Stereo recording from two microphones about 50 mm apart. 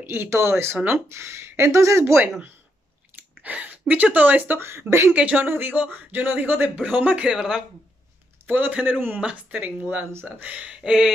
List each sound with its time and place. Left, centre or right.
0.1 s speech: right
3.4 s speech: right
4.6 s speech: right
5.1 s speech: right
5.5 s speech: right
6.7 s speech: right
7.2 s speech: centre
8.5 s speech: right
9.2 s speech: right; by 11.1 s centre